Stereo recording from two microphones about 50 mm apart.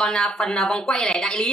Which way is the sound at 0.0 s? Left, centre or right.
Centre.